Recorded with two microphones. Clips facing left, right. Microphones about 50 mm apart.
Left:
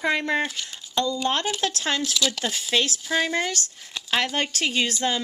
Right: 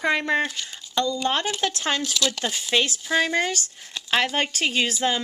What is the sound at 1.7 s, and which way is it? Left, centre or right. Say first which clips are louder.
Speech: even; centre.